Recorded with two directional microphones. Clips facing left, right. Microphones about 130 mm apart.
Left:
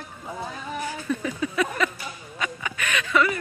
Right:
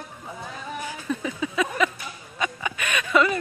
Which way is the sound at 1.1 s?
10° right (ahead or behind).